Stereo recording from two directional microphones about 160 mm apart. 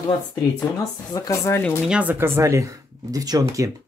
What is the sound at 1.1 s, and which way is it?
Speech, 20° left (ahead or behind).